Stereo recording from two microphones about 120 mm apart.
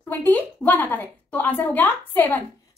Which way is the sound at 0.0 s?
15° left (ahead or behind).